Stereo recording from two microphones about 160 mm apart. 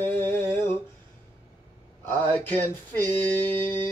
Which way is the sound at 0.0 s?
10° left (ahead or behind).